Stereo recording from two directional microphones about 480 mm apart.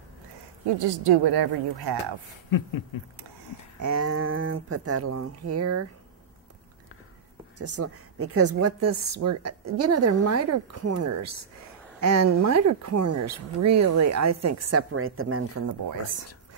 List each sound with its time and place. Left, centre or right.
0.8 s a woman's voice: right
2.5 s speech: left
3.8 s speech: right
7.5 s a woman's voice: right